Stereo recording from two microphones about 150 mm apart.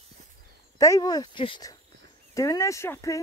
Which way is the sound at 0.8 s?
25° left (ahead or behind).